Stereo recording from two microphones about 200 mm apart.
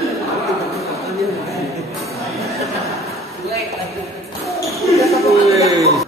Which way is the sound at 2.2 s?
Centre (ahead or behind).